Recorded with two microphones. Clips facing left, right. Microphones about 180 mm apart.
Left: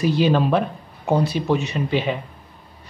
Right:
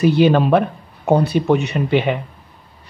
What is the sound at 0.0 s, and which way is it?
Speech, 60° right (ahead or behind).